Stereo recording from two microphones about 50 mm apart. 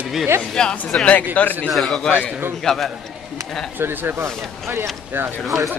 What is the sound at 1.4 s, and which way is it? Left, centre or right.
Speech, left.